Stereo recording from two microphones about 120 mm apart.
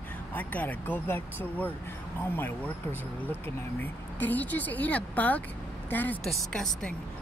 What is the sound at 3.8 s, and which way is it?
Speech, 15° left (ahead or behind).